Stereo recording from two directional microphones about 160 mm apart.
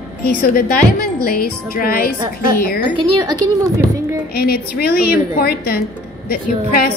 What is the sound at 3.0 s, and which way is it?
A woman's voice, 25° right (ahead or behind).